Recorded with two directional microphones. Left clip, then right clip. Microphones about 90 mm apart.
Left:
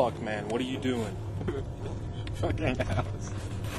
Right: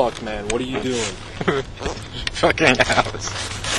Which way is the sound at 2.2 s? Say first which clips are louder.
Right 16 dB; 35° right (ahead or behind).